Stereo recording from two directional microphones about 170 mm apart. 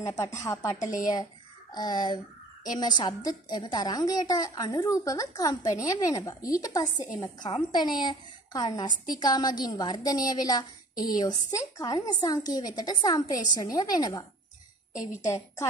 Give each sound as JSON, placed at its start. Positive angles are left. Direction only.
{"t": 0.0, "sound": "a woman's voice", "side_deg": 20}
{"t": 15.2, "sound": "a woman's voice", "side_deg": 15}